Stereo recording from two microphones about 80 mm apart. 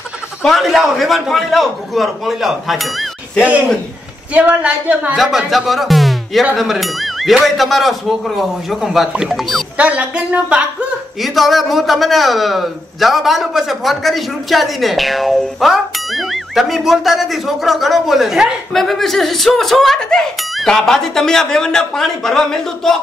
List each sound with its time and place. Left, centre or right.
0.4 s a man's voice: centre
3.4 s a woman's voice: centre
5.1 s a man's voice: centre
5.5 s music: centre
6.5 s a man's voice: centre
9.8 s a woman's voice: centre
11.1 s a man's voice: centre